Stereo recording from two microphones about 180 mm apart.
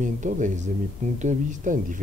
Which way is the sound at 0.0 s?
45° right (ahead or behind).